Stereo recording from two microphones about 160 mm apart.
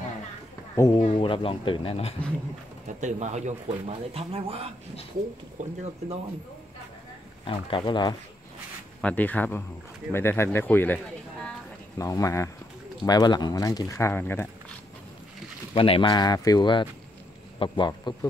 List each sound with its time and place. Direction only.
0.7 s speech: 25° left (ahead or behind)
3.0 s speech: 45° right (ahead or behind)
5.6 s speech: 50° right (ahead or behind)
7.4 s speech: 30° left (ahead or behind)
9.0 s speech: 10° left (ahead or behind)
12.0 s speech: 20° left (ahead or behind)
15.7 s speech: 35° left (ahead or behind)